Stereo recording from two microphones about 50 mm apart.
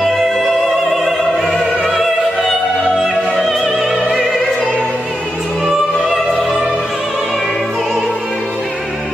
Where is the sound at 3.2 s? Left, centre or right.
Centre.